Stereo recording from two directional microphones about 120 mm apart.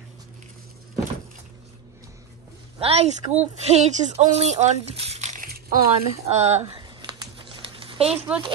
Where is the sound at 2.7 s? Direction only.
55° right (ahead or behind).